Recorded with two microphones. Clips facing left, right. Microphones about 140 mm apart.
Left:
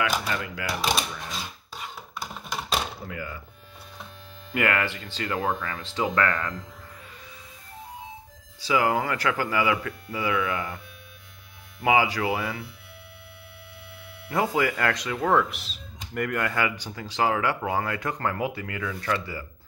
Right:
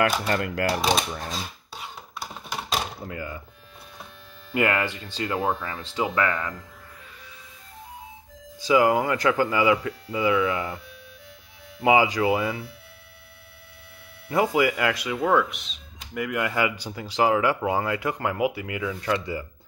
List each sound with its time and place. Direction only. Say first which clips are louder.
0.0 s speech: right 4 dB; 50° right (ahead or behind)
0.7 s speech: right 3 dB; 35° right (ahead or behind)
2.1 s a sound: even; centre (ahead or behind)
3.1 s speech: right 2 dB; 25° right (ahead or behind)
4.6 s speech: right 2 dB; 20° right (ahead or behind)
8.5 s speech: right 4 dB; 20° right (ahead or behind)
11.8 s speech: right 3 dB; 20° right (ahead or behind)
14.3 s speech: right 3 dB; 15° right (ahead or behind); by 16.3 s centre (ahead or behind)
16.3 s speech: right 3 dB; 15° right (ahead or behind)